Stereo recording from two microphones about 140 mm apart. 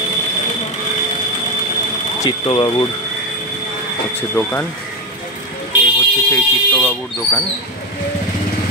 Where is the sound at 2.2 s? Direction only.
35° left (ahead or behind).